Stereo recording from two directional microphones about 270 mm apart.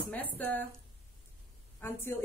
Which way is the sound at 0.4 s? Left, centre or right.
Centre.